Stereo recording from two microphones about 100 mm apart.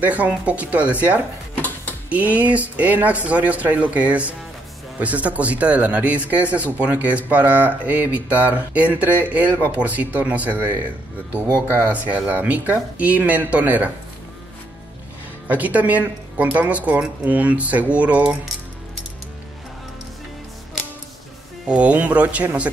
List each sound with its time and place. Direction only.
0.0 s speech: 15° right (ahead or behind)
2.0 s speech: 15° right (ahead or behind)
11.9 s speech: 15° right (ahead or behind)
15.4 s speech: 15° right (ahead or behind)
21.6 s speech: 10° right (ahead or behind)